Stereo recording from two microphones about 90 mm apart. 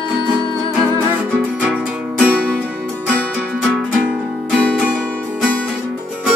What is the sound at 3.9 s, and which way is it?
Music, 15° right (ahead or behind).